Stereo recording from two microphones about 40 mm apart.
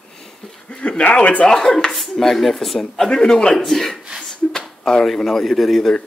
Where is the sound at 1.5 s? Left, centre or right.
Centre.